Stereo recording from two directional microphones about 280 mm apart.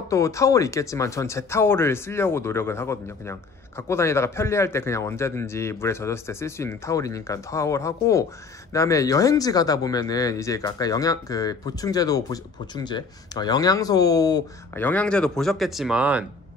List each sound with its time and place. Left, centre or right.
0.1 s speech: centre